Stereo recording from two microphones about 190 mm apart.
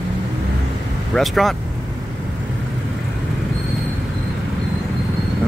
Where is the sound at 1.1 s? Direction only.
Centre (ahead or behind).